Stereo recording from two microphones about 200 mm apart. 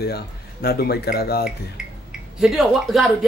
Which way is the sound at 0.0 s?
55° left (ahead or behind).